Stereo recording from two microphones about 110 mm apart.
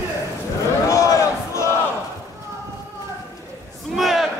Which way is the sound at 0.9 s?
30° left (ahead or behind).